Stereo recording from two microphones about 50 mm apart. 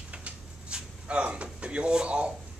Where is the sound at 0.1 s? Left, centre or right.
Right.